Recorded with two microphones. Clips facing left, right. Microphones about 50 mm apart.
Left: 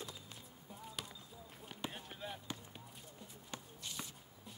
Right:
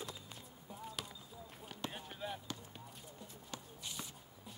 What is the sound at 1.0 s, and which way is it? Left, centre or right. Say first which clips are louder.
Basketball bounce: right 1 dB; centre.